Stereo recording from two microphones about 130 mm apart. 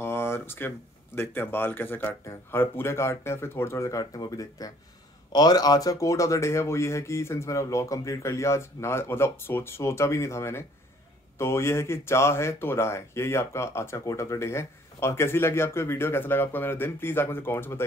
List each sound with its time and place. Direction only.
0.0 s speech: 20° left (ahead or behind)